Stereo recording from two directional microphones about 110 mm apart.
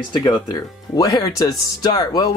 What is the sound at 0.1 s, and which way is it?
Speech, 35° left (ahead or behind).